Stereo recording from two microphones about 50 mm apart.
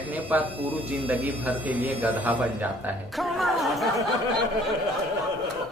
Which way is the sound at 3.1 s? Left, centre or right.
Centre.